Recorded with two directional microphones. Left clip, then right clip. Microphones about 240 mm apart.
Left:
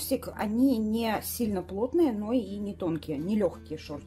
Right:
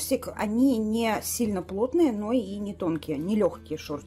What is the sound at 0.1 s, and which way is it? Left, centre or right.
A woman's voice, centre.